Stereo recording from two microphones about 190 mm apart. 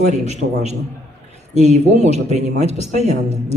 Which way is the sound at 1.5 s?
35° right (ahead or behind).